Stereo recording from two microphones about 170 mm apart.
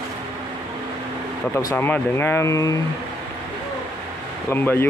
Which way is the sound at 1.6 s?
15° left (ahead or behind).